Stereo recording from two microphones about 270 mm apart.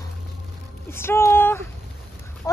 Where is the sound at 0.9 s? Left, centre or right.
Centre.